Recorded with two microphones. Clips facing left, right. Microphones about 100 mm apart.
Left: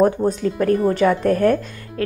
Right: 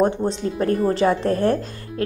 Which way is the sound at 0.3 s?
30° right (ahead or behind).